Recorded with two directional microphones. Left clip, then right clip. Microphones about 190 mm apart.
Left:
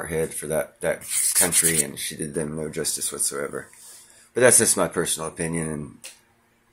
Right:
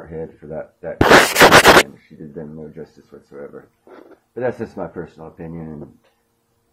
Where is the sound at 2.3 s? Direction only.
25° left (ahead or behind).